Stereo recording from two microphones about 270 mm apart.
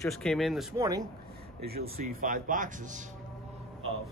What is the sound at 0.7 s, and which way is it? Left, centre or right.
Speech, centre.